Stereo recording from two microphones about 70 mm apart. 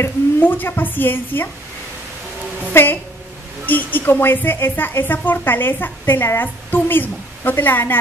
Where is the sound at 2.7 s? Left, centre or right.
Left.